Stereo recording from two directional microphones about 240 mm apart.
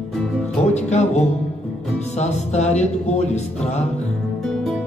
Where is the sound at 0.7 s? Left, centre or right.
Left.